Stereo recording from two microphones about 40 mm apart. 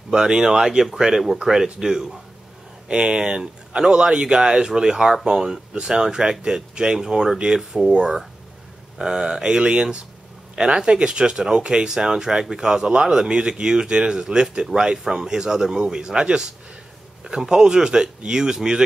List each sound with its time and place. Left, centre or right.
0.1 s speech: centre
2.9 s speech: right